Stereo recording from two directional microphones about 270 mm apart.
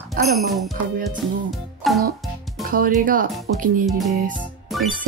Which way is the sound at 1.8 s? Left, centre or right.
Centre.